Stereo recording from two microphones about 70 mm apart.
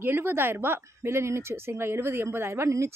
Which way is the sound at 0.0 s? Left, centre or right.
Right.